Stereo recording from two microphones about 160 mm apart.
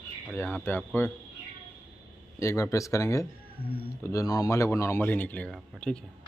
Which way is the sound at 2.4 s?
20° left (ahead or behind).